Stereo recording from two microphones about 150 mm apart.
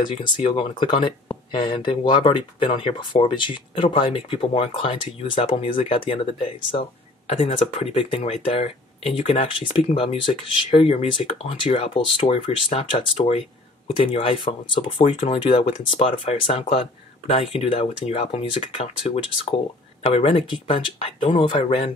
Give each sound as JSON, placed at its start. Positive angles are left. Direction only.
{"t": 0.0, "sound": "speech", "side_deg": 30}